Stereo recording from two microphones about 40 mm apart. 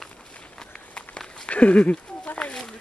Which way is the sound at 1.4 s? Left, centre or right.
Left.